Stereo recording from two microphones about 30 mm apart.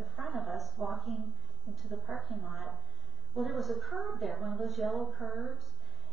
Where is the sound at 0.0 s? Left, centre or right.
Centre.